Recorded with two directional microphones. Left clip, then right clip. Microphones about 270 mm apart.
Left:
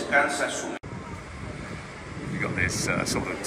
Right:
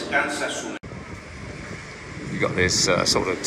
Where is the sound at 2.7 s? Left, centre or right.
Centre.